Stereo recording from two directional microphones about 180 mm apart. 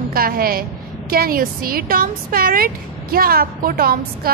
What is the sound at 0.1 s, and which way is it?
A woman's voice, 55° right (ahead or behind).